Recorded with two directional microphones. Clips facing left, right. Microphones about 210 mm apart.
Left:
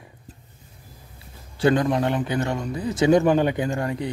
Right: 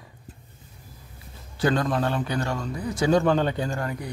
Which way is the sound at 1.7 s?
20° left (ahead or behind).